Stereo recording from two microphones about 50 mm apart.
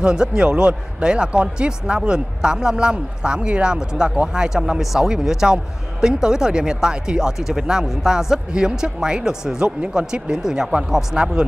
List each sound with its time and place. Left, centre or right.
0.0 s speech: centre